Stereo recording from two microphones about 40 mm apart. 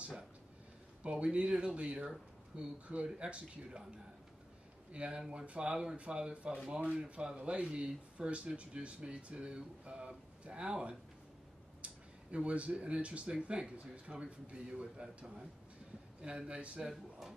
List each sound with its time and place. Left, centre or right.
1.0 s speech: right
4.9 s speech: right
6.7 s speech: right
16.2 s speech: right
16.8 s speech: centre